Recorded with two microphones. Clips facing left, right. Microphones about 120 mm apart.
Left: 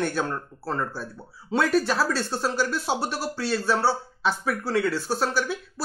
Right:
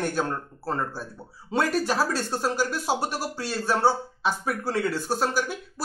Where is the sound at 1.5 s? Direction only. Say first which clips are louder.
Left 2 dB; 45° right (ahead or behind).